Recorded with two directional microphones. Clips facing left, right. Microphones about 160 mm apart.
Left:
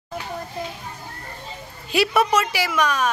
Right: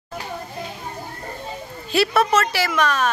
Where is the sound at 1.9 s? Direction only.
15° left (ahead or behind).